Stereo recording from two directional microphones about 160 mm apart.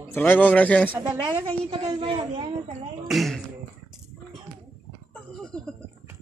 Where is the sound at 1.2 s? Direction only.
25° right (ahead or behind).